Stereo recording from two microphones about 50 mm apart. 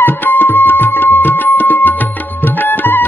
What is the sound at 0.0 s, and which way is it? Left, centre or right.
Music, left.